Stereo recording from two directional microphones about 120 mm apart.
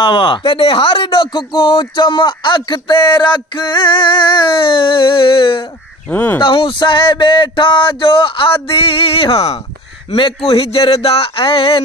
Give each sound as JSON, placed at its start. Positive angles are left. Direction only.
{"t": 0.0, "sound": "speech", "side_deg": 45}
{"t": 6.0, "sound": "speech", "side_deg": 15}
{"t": 6.4, "sound": "speech", "side_deg": 45}